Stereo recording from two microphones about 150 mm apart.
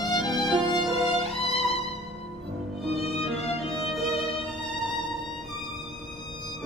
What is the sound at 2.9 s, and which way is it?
Music, 40° left (ahead or behind).